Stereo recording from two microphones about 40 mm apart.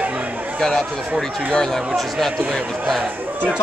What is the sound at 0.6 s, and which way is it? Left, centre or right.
Speech, centre.